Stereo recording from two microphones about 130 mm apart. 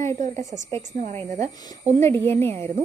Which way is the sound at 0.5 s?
85° right.